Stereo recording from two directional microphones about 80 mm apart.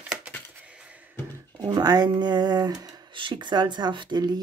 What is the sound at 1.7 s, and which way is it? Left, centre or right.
Speech, right.